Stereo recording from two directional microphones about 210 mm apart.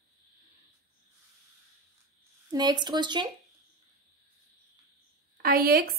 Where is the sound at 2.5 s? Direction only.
20° right (ahead or behind).